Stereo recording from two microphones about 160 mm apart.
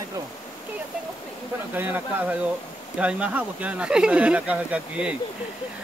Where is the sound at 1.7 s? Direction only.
10° right (ahead or behind).